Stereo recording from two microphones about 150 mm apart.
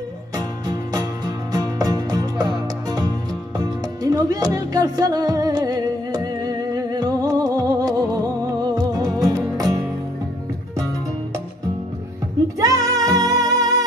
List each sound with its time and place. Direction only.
1.5 s music: 25° right (ahead or behind)
12.5 s music: 20° right (ahead or behind)